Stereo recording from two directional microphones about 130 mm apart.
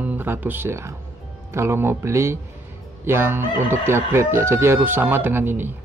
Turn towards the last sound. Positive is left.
turn(degrees=-15)  # may be behind; listen again after turning